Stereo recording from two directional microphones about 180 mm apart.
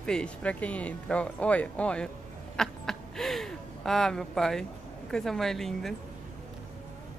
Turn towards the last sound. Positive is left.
turn(degrees=0)  # may be behind; listen again after turning